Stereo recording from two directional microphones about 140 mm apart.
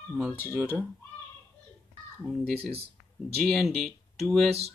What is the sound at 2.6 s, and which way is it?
Speech, 45° right (ahead or behind).